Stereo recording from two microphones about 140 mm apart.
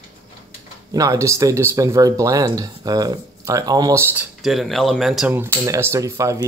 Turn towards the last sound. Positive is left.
turn(degrees=-25)  # may be behind; listen again after turning